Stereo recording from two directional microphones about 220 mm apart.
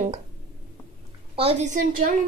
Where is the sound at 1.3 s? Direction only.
30° right (ahead or behind).